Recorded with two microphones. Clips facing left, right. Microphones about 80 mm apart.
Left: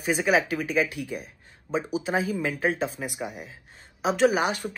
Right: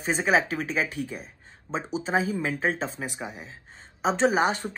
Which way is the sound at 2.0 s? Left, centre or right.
Right.